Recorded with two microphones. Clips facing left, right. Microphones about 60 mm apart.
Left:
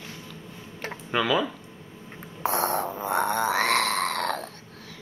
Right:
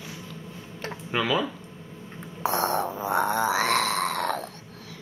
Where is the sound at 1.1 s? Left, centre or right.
Centre.